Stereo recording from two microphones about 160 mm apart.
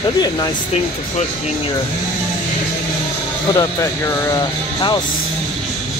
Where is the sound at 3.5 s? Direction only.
20° left (ahead or behind).